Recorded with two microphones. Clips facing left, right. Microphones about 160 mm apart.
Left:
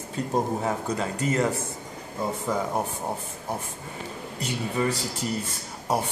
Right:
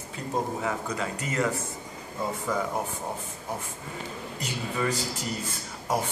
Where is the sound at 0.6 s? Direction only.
35° left (ahead or behind).